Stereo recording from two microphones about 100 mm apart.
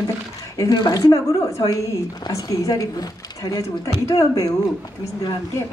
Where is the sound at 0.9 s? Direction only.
30° left (ahead or behind).